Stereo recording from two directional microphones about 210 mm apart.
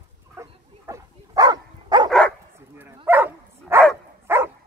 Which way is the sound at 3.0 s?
10° right (ahead or behind).